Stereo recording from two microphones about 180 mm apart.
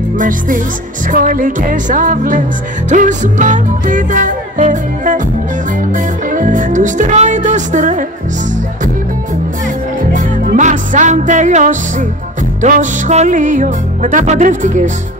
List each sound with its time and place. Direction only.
0.2 s music: 45° right (ahead or behind)
10.1 s music: 45° right (ahead or behind)